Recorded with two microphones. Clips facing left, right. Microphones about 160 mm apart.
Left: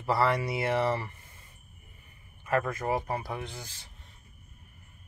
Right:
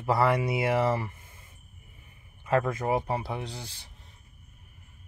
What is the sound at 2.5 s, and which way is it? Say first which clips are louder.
Speech: right 3 dB; 20° right (ahead or behind).